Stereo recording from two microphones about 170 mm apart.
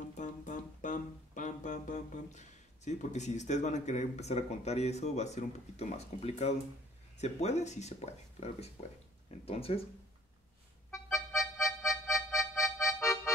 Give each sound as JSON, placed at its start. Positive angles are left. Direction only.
{"t": 0.2, "sound": "music", "side_deg": 50}
{"t": 7.2, "sound": "speech", "side_deg": 40}
{"t": 10.9, "sound": "music", "side_deg": 15}